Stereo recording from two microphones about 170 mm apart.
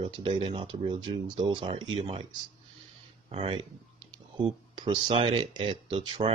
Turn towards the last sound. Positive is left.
turn(degrees=-30)  # may be behind; listen again after turning